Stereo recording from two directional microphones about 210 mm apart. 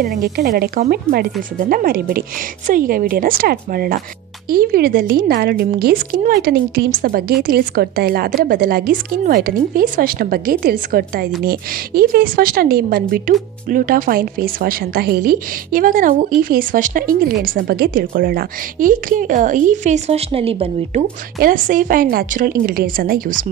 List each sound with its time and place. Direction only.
0.0 s a woman's voice: 45° right (ahead or behind); by 21.0 s 25° right (ahead or behind)
21.4 s a woman's voice: 40° right (ahead or behind)